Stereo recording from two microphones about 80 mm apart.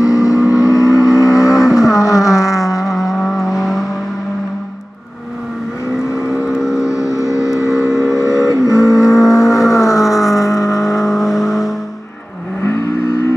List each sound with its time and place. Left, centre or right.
0.0 s vehicle: left
1.5 s vehicle: centre
1.9 s a sound: left
2.8 s vehicle: centre
6.5 s vehicle: centre
6.8 s vehicle: left
7.7 s vehicle: centre
8.2 s vehicle: left
10.0 s vehicle: centre
10.3 s vehicle: left
11.0 s vehicle: centre
12.6 s vehicle: left